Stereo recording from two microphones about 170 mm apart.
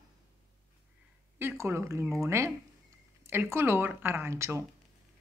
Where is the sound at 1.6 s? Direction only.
15° right (ahead or behind).